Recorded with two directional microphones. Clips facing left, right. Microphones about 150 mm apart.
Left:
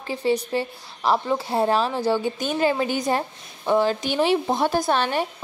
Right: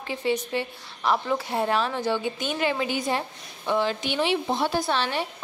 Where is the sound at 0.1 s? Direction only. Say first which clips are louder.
Left 4 dB; 35° left (ahead or behind).